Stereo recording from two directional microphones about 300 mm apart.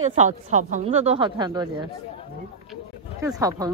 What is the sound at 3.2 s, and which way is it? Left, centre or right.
Speech, centre.